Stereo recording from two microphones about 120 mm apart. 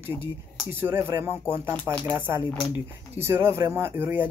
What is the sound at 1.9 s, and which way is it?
Speech, 10° left (ahead or behind).